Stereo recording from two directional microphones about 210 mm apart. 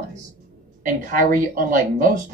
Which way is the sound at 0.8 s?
40° right (ahead or behind).